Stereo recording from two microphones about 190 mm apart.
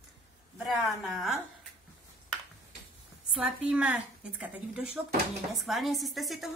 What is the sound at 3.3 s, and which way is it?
A woman's voice, 5° right (ahead or behind).